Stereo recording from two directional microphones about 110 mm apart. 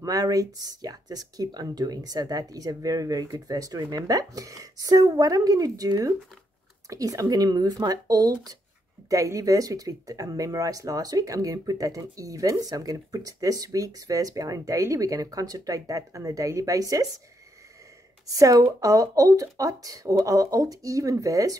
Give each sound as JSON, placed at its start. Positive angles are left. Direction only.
{"t": 0.0, "sound": "speech", "side_deg": -30}
{"t": 18.2, "sound": "speech", "side_deg": -30}